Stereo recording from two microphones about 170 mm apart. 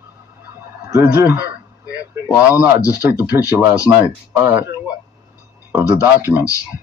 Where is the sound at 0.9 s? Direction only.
15° right (ahead or behind).